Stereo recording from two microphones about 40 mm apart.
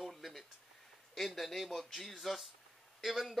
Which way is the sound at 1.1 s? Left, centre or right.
Centre.